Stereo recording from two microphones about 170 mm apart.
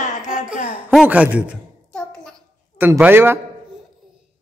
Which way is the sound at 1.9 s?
5° left (ahead or behind).